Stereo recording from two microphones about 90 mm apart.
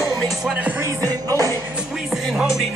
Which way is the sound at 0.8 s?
40° right (ahead or behind).